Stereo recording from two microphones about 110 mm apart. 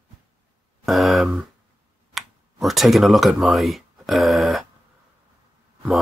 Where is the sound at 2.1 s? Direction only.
Centre (ahead or behind).